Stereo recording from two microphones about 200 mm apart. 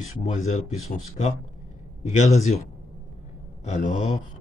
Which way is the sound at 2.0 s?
35° left (ahead or behind).